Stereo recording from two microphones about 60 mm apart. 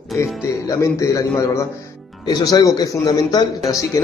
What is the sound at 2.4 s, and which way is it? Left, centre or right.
Speech, left.